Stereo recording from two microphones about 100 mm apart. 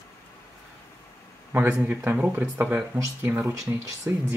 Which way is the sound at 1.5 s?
20° right (ahead or behind).